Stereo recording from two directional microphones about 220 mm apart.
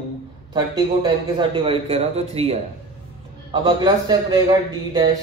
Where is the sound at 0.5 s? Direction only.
20° right (ahead or behind).